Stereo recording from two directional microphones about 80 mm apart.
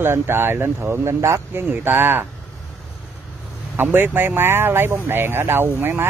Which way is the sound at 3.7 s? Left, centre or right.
Right.